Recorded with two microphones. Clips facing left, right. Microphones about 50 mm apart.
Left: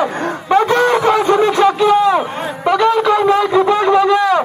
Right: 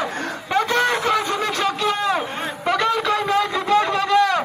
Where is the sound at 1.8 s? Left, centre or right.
Centre.